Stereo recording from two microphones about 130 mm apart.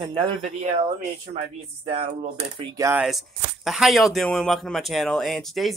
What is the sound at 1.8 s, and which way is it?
Speech, 50° right (ahead or behind).